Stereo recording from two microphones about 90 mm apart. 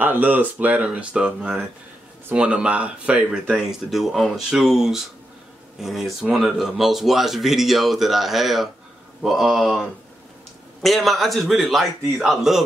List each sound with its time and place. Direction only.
0.0 s speech: 20° right (ahead or behind); by 12.6 s 5° right (ahead or behind)